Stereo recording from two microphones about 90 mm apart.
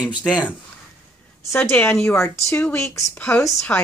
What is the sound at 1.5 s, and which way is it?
A woman's voice, 25° left (ahead or behind).